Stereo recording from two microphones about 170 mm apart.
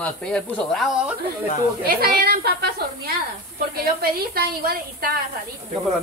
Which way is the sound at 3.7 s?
65° right (ahead or behind).